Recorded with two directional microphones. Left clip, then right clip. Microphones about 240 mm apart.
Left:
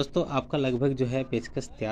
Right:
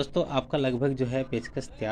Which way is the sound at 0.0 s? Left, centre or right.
Centre.